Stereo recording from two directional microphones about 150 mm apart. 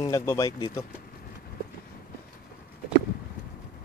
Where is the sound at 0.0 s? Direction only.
20° left (ahead or behind).